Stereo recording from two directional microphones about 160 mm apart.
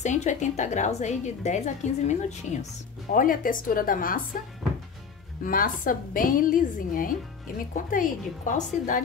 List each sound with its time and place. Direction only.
0.0 s a woman's voice: 50° left (ahead or behind)
3.1 s a woman's voice: 60° left (ahead or behind)
5.4 s a woman's voice: 60° left (ahead or behind)